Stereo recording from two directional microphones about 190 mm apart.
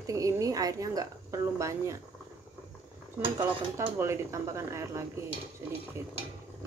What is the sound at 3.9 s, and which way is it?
A woman's voice, 15° right (ahead or behind).